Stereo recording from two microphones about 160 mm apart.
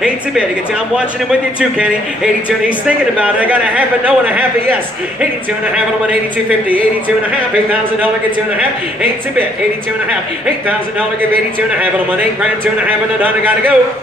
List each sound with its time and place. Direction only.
3.2 s a man's voice: 10° right (ahead or behind)
12.8 s a man's voice: 10° right (ahead or behind)